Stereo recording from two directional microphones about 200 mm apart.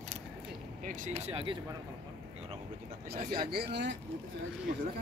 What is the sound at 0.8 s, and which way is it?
Speech, 40° right (ahead or behind).